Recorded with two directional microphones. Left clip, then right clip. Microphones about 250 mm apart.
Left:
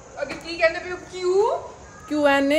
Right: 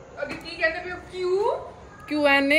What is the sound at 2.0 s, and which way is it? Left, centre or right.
Speech, centre.